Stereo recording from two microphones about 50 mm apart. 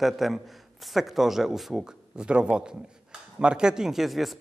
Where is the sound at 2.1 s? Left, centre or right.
Centre.